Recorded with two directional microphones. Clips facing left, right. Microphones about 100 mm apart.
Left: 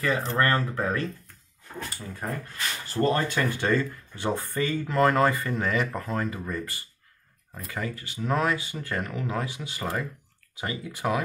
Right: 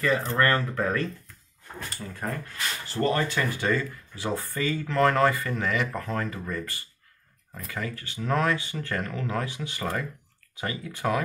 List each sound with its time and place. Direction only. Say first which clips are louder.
0.0 s speech: right 1 dB; 25° left (ahead or behind)
2.0 s speech: right 2 dB; 10° left (ahead or behind)
3.0 s speech: left 1 dB; 25° left (ahead or behind)
3.3 s speech: left 1 dB; 45° left (ahead or behind)
4.6 s speech: even; 20° left (ahead or behind)